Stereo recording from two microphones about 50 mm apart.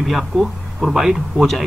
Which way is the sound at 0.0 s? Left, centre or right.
Centre.